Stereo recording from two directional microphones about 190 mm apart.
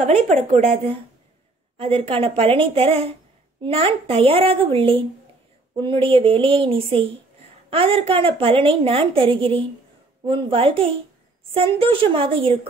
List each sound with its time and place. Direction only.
0.0 s speech: 35° right (ahead or behind)